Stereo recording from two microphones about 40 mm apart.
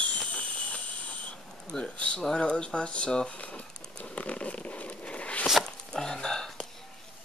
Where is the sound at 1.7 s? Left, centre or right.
Left.